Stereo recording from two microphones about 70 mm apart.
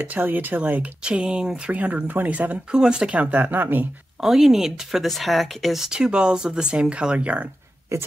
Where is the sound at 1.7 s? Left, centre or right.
Right.